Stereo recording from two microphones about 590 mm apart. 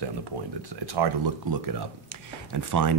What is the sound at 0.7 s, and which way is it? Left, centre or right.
Speech, right.